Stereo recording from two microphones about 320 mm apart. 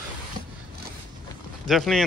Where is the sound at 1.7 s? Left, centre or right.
Centre.